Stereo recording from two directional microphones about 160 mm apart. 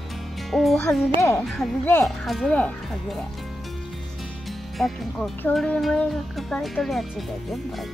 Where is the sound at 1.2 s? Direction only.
15° left (ahead or behind).